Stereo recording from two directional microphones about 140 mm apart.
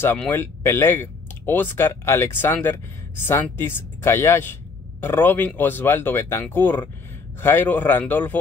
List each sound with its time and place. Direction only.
0.0 s speech: 15° left (ahead or behind)